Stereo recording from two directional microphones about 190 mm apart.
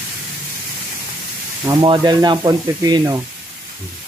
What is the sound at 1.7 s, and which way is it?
Speech, 25° right (ahead or behind).